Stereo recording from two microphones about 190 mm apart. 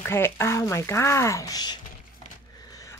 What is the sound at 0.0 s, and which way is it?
Speech, 10° left (ahead or behind).